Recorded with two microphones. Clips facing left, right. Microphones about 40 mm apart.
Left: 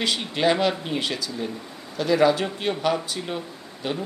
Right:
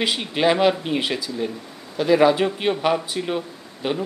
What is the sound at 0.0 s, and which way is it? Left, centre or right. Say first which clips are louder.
Speech: right 2 dB; centre.